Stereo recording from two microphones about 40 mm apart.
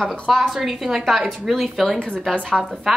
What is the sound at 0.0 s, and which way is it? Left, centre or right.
Speech, centre.